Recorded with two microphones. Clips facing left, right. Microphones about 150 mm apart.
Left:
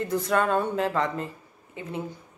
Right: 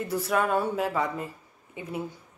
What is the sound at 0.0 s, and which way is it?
Speech, 5° right (ahead or behind).